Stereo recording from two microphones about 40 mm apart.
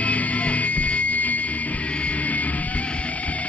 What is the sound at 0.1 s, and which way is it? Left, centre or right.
Music, left.